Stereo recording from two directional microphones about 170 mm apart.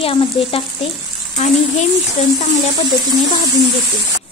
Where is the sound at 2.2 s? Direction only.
40° left (ahead or behind).